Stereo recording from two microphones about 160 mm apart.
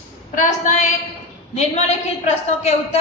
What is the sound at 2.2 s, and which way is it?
Speech, 40° left (ahead or behind).